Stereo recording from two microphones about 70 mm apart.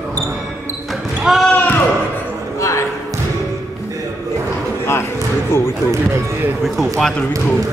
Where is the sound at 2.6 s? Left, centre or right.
Left.